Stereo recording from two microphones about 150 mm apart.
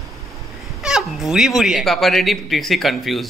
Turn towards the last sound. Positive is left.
turn(degrees=0)  # may be behind; listen again after turning